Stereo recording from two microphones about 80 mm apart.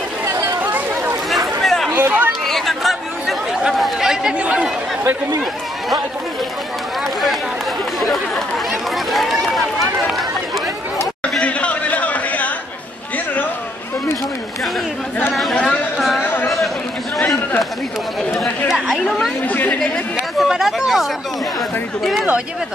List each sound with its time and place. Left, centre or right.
0.2 s chatter: right
0.6 s chatter: right
1.3 s a sound: centre
1.9 s chatter: right
2.4 s chatter: centre
8.9 s speech: centre
11.2 s a sound: centre
16.0 s chatter: centre
18.7 s speech: centre
19.4 s speech: left
20.3 s speech: centre